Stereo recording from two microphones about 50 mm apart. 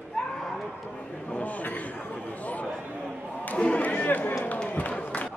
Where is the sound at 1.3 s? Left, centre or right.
Left.